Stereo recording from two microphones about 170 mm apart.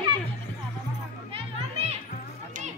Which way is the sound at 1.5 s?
35° right (ahead or behind).